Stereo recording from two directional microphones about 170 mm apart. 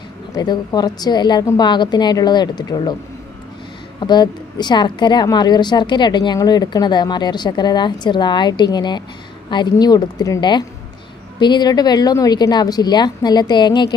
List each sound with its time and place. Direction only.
0.3 s a woman's voice: 20° left (ahead or behind)
4.0 s a woman's voice: 25° left (ahead or behind)